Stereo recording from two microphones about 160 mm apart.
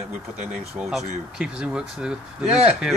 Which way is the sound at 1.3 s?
5° right (ahead or behind).